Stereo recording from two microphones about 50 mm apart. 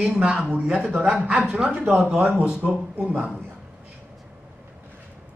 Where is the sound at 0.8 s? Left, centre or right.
Right.